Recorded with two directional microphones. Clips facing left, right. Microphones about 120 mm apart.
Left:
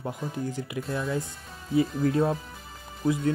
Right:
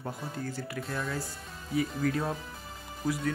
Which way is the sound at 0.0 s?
15° left (ahead or behind).